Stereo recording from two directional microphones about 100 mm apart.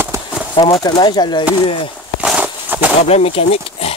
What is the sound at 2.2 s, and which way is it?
Walk, 10° right (ahead or behind).